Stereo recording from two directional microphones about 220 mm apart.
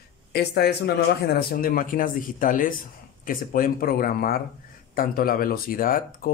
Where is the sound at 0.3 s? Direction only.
45° left (ahead or behind).